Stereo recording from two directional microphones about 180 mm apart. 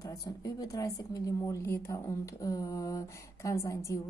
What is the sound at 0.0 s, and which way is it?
A woman's voice, 20° left (ahead or behind).